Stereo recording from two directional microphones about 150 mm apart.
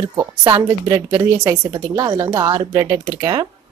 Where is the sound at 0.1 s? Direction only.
25° right (ahead or behind).